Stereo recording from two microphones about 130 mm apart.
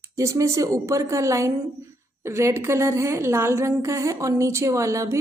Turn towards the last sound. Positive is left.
turn(degrees=-25)  # may be behind; listen again after turning